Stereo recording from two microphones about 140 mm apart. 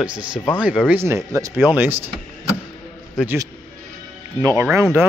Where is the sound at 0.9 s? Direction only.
20° right (ahead or behind).